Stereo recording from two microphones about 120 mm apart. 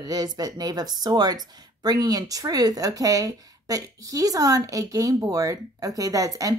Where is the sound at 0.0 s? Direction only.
35° right (ahead or behind).